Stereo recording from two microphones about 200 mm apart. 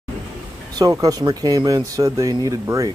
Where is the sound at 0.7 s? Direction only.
20° right (ahead or behind).